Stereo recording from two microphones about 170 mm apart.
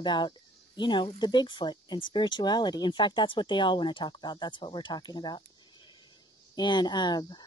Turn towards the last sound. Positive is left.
turn(degrees=25)  # may be behind; listen again after turning